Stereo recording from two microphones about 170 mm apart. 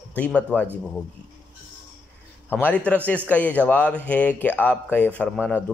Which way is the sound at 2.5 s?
10° left (ahead or behind).